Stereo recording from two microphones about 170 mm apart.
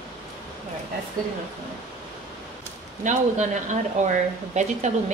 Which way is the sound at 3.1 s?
45° right (ahead or behind).